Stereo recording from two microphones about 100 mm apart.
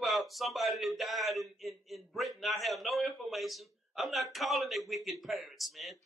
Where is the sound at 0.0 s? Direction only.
Centre (ahead or behind).